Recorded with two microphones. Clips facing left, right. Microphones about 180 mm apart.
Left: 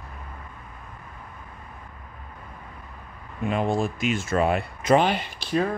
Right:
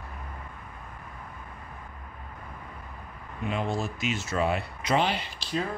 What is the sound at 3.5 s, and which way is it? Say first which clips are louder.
Speech: left 6 dB; 50° left (ahead or behind).